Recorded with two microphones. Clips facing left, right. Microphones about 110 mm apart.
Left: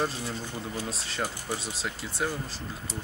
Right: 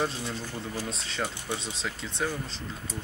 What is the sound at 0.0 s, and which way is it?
Speech, centre (ahead or behind).